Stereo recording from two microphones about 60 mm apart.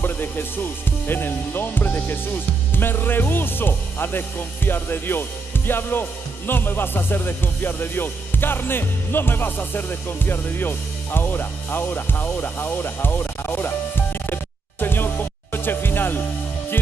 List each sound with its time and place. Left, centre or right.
0.0 s music: left